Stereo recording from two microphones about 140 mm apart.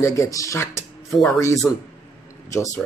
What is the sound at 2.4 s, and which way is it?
Speech, 20° left (ahead or behind).